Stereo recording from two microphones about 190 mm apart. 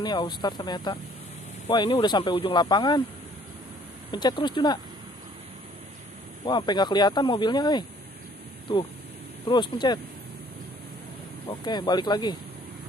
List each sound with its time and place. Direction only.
0.0 s speech: 25° left (ahead or behind)
4.1 s speech: 25° left (ahead or behind)
6.4 s speech: 25° left (ahead or behind)
9.5 s speech: 25° left (ahead or behind)
11.4 s speech: 25° left (ahead or behind)